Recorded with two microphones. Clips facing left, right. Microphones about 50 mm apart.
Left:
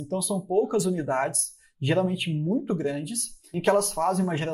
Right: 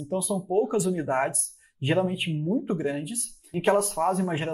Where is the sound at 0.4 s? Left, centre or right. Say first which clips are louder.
Left 2 dB; right.